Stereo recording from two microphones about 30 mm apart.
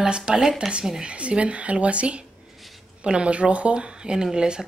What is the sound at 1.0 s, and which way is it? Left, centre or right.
Speech, right.